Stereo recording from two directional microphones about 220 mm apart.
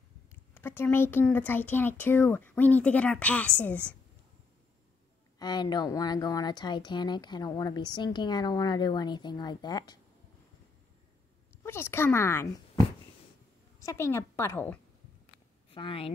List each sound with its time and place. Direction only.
0.3 s speech: 10° left (ahead or behind)
5.4 s a woman's voice: 20° left (ahead or behind)
11.6 s speech: 10° left (ahead or behind)
13.7 s speech: 15° left (ahead or behind)
15.7 s a woman's voice: 25° left (ahead or behind)